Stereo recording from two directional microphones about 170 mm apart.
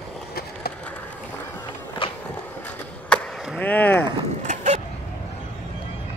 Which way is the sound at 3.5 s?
10° left (ahead or behind).